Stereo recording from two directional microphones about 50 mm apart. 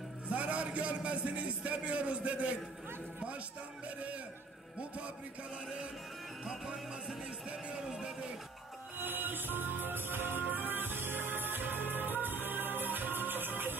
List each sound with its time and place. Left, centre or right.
0.3 s a man's voice: right
6.4 s music: centre
8.9 s music: right